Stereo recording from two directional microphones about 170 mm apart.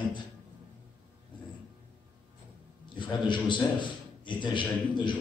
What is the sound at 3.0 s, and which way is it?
A man's voice, 25° left (ahead or behind).